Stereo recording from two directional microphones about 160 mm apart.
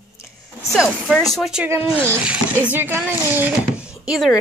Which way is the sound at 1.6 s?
15° right (ahead or behind).